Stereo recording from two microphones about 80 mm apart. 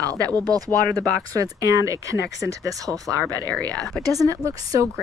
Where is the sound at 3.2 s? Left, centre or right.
Centre.